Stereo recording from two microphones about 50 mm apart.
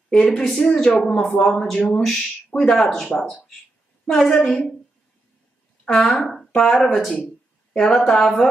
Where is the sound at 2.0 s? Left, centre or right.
Centre.